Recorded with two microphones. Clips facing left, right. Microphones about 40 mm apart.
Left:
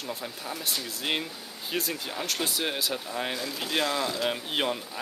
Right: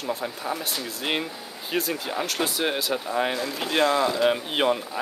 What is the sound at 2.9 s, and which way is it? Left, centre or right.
Speech, centre.